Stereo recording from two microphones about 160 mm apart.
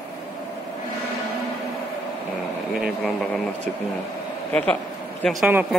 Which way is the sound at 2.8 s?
Centre (ahead or behind).